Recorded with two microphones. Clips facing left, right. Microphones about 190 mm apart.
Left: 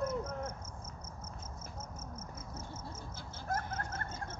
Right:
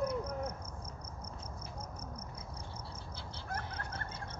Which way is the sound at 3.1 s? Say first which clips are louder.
Left 5 dB; 45° left (ahead or behind).